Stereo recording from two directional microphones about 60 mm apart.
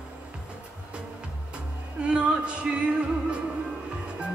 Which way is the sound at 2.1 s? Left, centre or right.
Centre.